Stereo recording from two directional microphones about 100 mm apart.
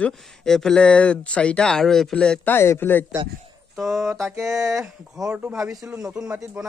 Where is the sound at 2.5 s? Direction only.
20° left (ahead or behind).